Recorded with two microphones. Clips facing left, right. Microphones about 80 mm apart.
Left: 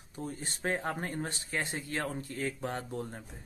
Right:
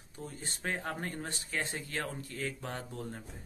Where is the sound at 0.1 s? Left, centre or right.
Left.